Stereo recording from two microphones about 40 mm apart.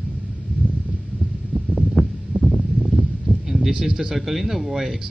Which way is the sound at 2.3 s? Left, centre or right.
Left.